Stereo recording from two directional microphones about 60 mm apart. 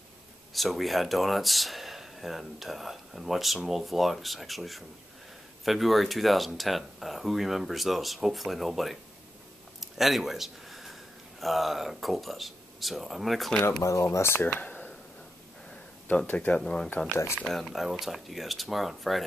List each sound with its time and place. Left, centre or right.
0.5 s speech: centre
13.7 s speech: left
14.1 s speech: left
14.4 s speech: left
16.3 s speech: centre